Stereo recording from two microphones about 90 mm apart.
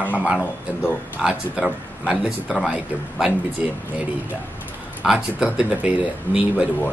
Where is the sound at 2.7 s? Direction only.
15° right (ahead or behind).